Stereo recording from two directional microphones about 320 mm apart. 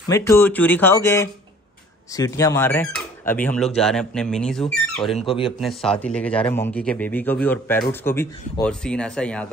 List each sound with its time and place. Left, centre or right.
0.1 s a man's voice: centre
5.2 s speech: centre
5.6 s a man's voice: centre